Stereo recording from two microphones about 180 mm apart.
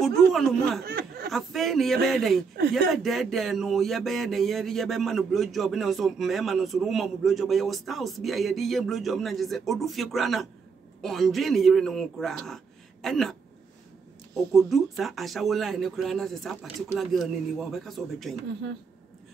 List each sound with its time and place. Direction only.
0.0 s speech: centre (ahead or behind)
0.8 s a sound: 60° right (ahead or behind)
1.3 s speech: centre (ahead or behind)